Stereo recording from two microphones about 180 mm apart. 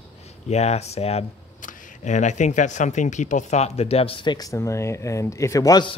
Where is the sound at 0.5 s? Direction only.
35° left (ahead or behind).